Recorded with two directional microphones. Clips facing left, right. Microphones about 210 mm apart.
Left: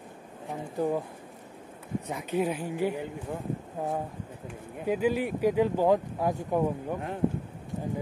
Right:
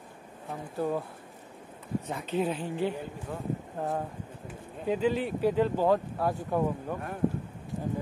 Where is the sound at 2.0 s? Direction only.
10° left (ahead or behind).